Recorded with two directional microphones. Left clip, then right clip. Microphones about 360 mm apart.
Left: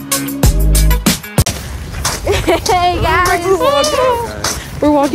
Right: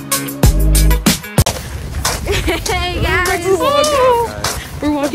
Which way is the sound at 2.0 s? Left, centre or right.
Centre.